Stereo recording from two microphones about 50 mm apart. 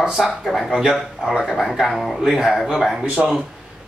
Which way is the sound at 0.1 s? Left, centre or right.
Centre.